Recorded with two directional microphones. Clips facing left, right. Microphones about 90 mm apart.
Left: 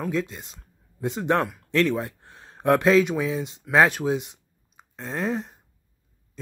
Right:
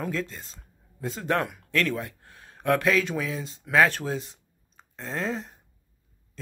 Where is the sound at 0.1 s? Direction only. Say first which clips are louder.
Left 4 dB; 15° left (ahead or behind).